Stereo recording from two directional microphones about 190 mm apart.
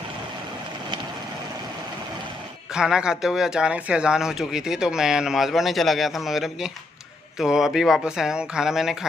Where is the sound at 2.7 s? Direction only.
5° right (ahead or behind).